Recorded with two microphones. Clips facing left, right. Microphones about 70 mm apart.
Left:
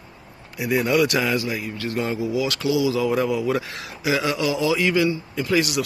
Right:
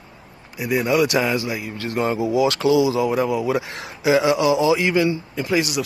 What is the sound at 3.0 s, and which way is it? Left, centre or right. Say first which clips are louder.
Speech: right 1 dB; centre.